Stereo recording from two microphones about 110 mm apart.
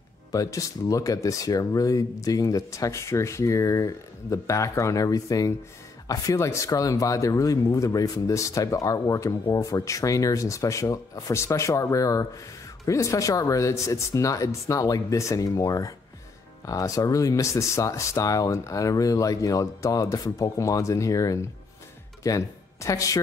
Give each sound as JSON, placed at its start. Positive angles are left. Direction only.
{"t": 0.3, "sound": "speech", "side_deg": 30}